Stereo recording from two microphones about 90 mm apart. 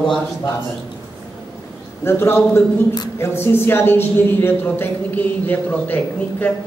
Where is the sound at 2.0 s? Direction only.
25° left (ahead or behind).